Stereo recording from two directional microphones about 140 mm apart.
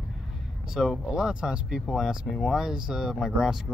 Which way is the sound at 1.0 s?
5° right (ahead or behind).